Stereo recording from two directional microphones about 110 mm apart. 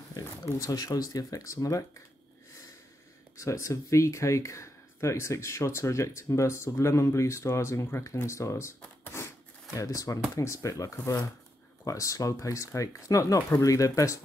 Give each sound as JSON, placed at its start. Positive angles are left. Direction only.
{"t": 0.1, "sound": "speech", "side_deg": 35}
{"t": 3.3, "sound": "speech", "side_deg": 25}